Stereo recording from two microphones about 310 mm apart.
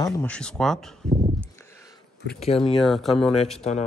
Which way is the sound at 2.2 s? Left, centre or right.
Left.